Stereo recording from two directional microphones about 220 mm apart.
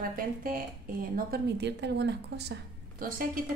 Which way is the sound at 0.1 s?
40° right (ahead or behind).